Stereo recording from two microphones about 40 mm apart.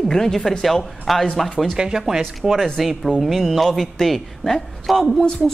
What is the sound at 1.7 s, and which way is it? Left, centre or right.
Speech, centre.